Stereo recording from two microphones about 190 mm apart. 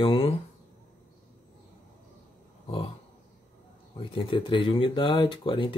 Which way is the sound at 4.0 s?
30° left (ahead or behind).